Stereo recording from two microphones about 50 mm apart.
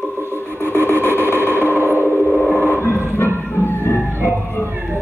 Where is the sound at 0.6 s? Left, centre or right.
Left.